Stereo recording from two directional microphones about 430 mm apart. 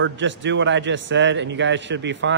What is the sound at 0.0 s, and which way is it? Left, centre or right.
A man's voice, right.